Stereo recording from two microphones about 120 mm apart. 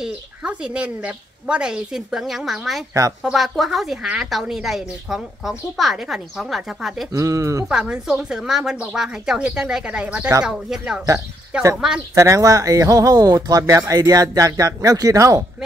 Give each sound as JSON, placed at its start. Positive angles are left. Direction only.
{"t": 0.0, "sound": "a woman's voice", "side_deg": -10}
{"t": 2.9, "sound": "speech", "side_deg": -30}
{"t": 3.3, "sound": "a woman's voice", "side_deg": 0}
{"t": 7.2, "sound": "speech", "side_deg": -25}
{"t": 7.6, "sound": "a woman's voice", "side_deg": -5}
{"t": 12.2, "sound": "speech", "side_deg": -25}